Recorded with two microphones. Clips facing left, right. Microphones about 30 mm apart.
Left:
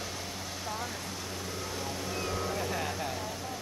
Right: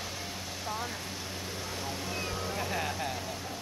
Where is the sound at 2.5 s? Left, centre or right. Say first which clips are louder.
Even; centre.